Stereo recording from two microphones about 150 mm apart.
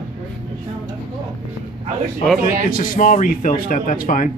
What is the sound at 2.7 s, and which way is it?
A man's voice, 70° left (ahead or behind).